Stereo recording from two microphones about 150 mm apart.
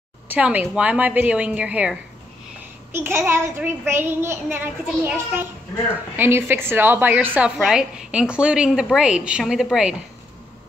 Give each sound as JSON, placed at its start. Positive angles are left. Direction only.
{"t": 0.3, "sound": "a child's voice", "side_deg": -10}